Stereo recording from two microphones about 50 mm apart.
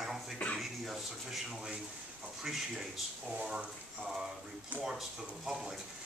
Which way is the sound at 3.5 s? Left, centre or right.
Centre.